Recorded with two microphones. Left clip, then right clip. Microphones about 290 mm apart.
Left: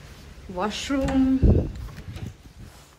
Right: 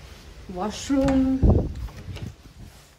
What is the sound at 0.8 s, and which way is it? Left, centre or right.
Speech, centre.